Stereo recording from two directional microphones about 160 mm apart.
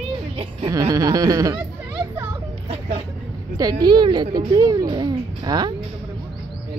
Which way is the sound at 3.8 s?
30° right (ahead or behind).